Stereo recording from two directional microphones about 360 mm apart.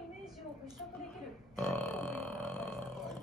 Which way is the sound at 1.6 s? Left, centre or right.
Centre.